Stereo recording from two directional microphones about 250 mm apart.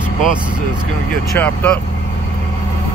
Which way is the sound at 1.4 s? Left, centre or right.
Centre.